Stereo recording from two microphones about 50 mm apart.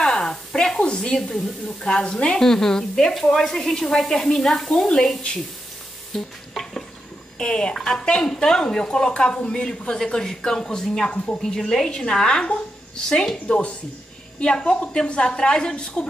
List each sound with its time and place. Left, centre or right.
0.0 s a sound: centre
1.1 s speech: centre
6.1 s speech: centre
6.5 s stir: centre
7.3 s speech: centre
11.1 s a woman's voice: left
11.4 s a woman's voice: centre